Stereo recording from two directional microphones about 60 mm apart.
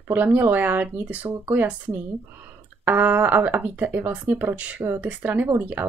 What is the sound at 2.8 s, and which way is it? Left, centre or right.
Speech, right.